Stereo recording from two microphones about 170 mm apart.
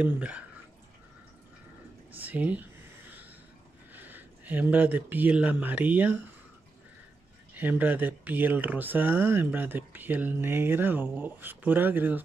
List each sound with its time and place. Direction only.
0.0 s speech: 5° right (ahead or behind)
2.1 s a sound: 10° right (ahead or behind)
3.9 s speech: 10° right (ahead or behind)
7.5 s speech: 10° right (ahead or behind)